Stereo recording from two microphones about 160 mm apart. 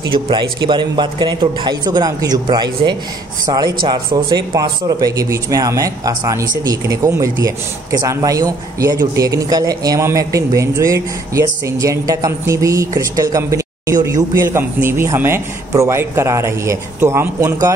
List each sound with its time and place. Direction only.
0.0 s speech: 30° right (ahead or behind)